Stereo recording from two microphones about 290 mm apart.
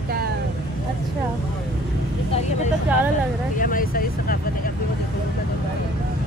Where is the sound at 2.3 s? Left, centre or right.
Left.